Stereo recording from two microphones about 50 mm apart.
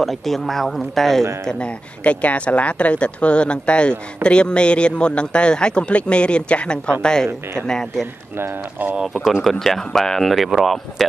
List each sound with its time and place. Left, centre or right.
0.0 s speech: centre
1.4 s a man's voice: centre
8.8 s speech: right
9.4 s speech: centre